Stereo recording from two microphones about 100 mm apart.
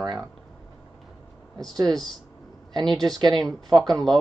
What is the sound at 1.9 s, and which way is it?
Speech, 5° left (ahead or behind).